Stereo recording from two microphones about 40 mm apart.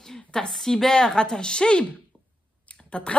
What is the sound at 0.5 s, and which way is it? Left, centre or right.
A woman's voice, centre.